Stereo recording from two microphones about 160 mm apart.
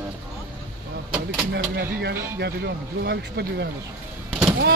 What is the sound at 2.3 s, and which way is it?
Speech, 85° right.